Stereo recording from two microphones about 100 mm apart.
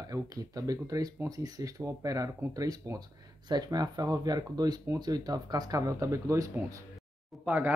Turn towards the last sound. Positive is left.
turn(degrees=-15)  # may be behind; listen again after turning